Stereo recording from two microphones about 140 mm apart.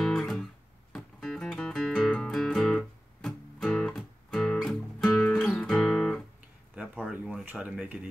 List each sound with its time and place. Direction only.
0.0 s guitar: 5° left (ahead or behind)
0.9 s music: 5° left (ahead or behind)
5.1 s guitar: 15° left (ahead or behind)
5.5 s music: 5° left (ahead or behind)
7.1 s a sound: 10° right (ahead or behind)